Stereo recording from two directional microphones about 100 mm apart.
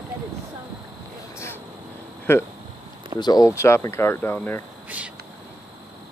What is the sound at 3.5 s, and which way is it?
Speech, 30° left (ahead or behind).